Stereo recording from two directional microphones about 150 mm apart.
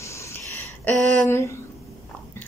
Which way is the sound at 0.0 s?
20° left (ahead or behind).